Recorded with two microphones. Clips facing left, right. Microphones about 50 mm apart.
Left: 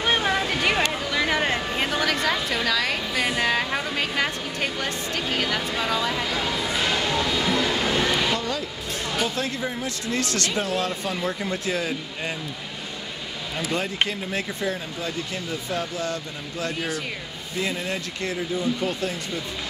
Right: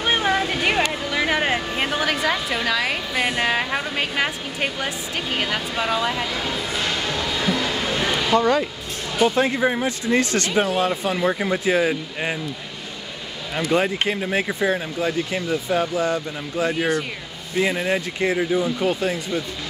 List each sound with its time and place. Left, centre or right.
0.0 s music: centre
0.9 s a sound: centre
1.8 s a woman's voice: centre
6.7 s a sound: centre
8.4 s speech: right
9.6 s speech: right
9.8 s speech: right
13.7 s a woman's voice: right
17.6 s speech: right